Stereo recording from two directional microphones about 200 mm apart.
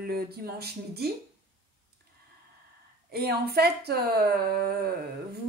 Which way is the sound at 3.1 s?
50° right (ahead or behind).